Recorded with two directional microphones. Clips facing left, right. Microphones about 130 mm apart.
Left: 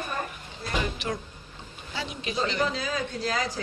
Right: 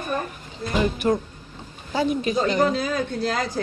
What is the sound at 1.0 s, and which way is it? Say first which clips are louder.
A man's voice: right 10 dB; 50° right (ahead or behind).